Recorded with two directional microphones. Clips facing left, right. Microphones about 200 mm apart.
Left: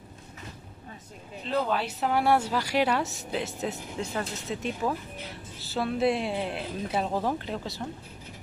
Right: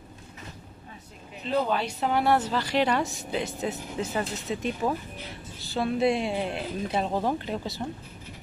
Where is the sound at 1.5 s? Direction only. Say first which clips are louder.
Right 2 dB; centre (ahead or behind).